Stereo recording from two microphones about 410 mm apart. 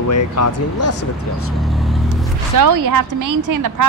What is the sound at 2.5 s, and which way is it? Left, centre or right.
A woman's voice, right.